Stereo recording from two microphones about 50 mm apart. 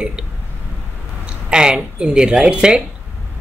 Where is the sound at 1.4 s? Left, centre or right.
Centre.